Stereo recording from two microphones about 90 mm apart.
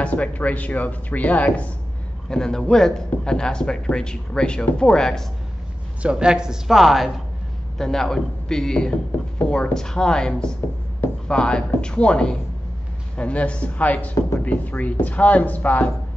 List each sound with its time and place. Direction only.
0.0 s speech: 15° left (ahead or behind)
6.0 s speech: 10° right (ahead or behind); by 15.9 s 15° left (ahead or behind)